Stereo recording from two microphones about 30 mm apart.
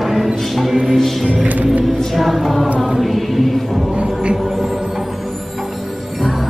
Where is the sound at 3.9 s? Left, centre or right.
Right.